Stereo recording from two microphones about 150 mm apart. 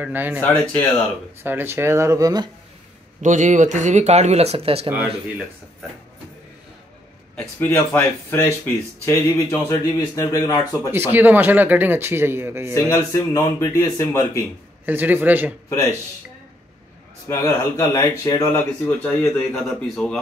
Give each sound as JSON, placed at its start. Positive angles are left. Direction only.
{"t": 0.0, "sound": "a man's voice", "side_deg": -10}
{"t": 0.4, "sound": "speech", "side_deg": 10}
{"t": 1.4, "sound": "a man's voice", "side_deg": -15}
{"t": 3.2, "sound": "speech", "side_deg": -55}
{"t": 7.3, "sound": "speech", "side_deg": 15}
{"t": 10.9, "sound": "a man's voice", "side_deg": -15}
{"t": 12.7, "sound": "speech", "side_deg": 20}
{"t": 14.9, "sound": "a man's voice", "side_deg": -10}
{"t": 17.3, "sound": "a man's voice", "side_deg": 20}